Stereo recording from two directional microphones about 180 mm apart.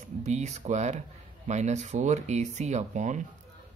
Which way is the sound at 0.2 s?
40° right (ahead or behind).